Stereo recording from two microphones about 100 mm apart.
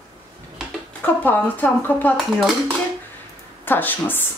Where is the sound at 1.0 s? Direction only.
20° left (ahead or behind).